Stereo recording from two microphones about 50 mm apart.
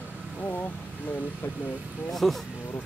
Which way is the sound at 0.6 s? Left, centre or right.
Left.